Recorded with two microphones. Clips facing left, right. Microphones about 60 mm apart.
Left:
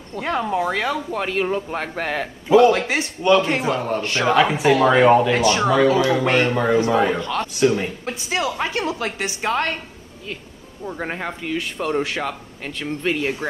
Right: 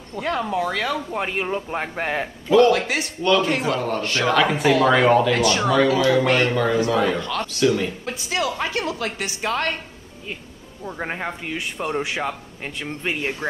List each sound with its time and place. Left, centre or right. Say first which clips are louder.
0.2 s a man's voice: left 1 dB; left
1.1 s speech: left 2 dB; centre
2.7 s a man's voice: left 1 dB; left
10.9 s speech: left 1 dB; centre